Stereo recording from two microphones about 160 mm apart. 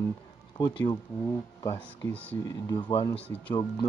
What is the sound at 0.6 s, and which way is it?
Speech, 25° left (ahead or behind).